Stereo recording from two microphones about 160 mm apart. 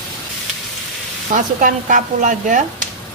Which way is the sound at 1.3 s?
55° right (ahead or behind).